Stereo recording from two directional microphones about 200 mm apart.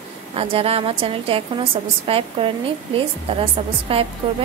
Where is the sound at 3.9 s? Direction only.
30° right (ahead or behind).